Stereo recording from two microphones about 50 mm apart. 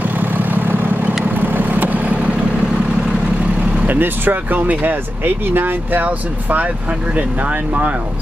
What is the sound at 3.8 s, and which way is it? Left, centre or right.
Speech, right.